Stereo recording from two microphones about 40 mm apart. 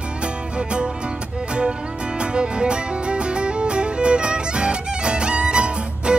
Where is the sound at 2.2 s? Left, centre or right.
Right.